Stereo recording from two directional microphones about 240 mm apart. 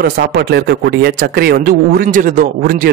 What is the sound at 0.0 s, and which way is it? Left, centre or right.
A man's voice, right.